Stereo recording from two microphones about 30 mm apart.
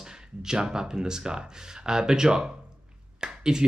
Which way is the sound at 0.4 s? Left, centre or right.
Right.